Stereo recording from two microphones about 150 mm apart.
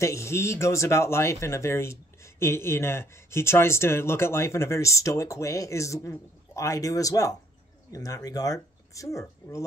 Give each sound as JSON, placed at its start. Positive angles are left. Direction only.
{"t": 0.0, "sound": "speech", "side_deg": 20}